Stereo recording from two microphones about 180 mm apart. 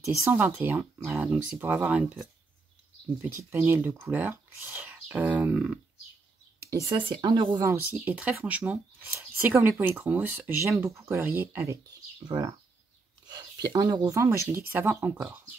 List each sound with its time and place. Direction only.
0.0 s speech: 15° right (ahead or behind)
6.7 s speech: 20° right (ahead or behind)
7.9 s speech: 10° right (ahead or behind)
13.3 s speech: 20° right (ahead or behind); by 15.4 s 5° right (ahead or behind)